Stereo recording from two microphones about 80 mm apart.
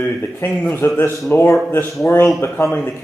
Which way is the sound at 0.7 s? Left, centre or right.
Left.